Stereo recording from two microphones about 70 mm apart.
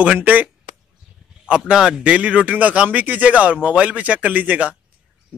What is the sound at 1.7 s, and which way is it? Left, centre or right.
Speech, centre.